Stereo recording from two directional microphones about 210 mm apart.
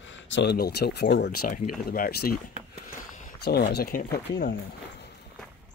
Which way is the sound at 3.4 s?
50° left (ahead or behind).